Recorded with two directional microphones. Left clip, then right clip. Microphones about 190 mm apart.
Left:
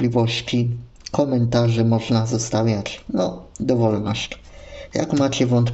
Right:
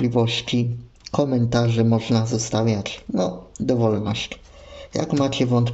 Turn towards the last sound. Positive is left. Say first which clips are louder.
# left 2 dB
turn(degrees=-5)  # may be behind; listen again after turning